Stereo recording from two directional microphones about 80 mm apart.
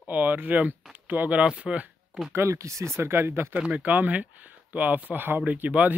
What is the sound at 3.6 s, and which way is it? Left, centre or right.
Speech, centre.